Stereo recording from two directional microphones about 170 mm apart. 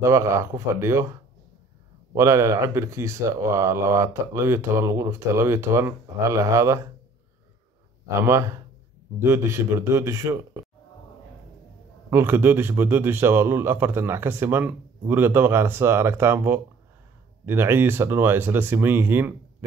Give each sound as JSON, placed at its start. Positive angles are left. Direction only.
{"t": 0.0, "sound": "speech", "side_deg": -15}
{"t": 8.2, "sound": "speech", "side_deg": -15}
{"t": 12.1, "sound": "speech", "side_deg": -15}